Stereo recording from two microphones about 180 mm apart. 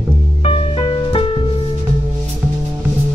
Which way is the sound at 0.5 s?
30° left (ahead or behind).